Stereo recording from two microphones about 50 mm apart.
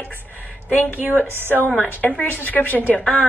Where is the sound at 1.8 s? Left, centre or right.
Left.